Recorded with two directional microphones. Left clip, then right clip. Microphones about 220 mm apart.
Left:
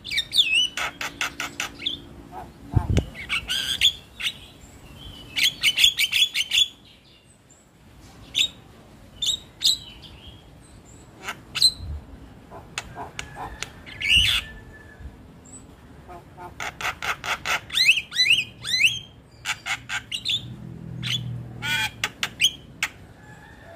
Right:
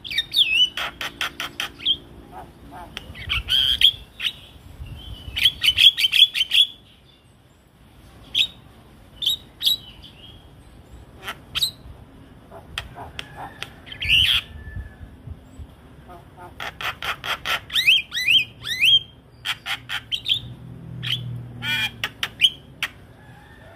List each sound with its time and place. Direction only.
0.0 s bird: 5° right (ahead or behind)
2.9 s bird: 5° right (ahead or behind)
5.3 s bird: 5° right (ahead or behind)
11.1 s a sound: 10° right (ahead or behind)
12.7 s bird: 5° right (ahead or behind)
16.3 s bird: centre (ahead or behind)